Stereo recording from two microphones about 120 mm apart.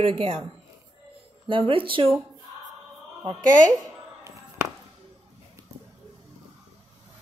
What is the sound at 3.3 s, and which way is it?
Speech, 90° right.